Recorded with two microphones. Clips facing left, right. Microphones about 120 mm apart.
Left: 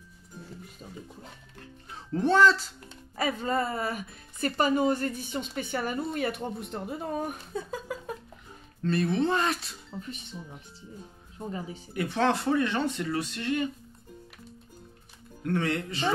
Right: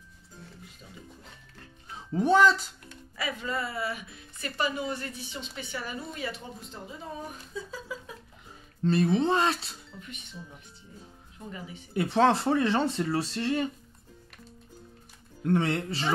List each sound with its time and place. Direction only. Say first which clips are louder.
0.8 s a woman's voice: left 5 dB; 40° left (ahead or behind)
2.1 s speech: even; 15° right (ahead or behind)
3.2 s a woman's voice: left 5 dB; 40° left (ahead or behind)
8.8 s speech: right 2 dB; 25° right (ahead or behind)
9.9 s speech: left 7 dB; 35° left (ahead or behind)
11.3 s speech: left 5 dB; 35° left (ahead or behind)
11.9 s speech: right 3 dB; 30° right (ahead or behind)
15.4 s speech: right 2 dB; 25° right (ahead or behind)